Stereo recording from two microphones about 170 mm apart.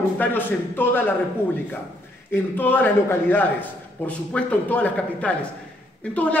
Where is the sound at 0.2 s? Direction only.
10° left (ahead or behind).